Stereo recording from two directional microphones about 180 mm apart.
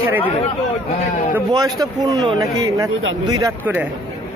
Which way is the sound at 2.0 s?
20° right (ahead or behind).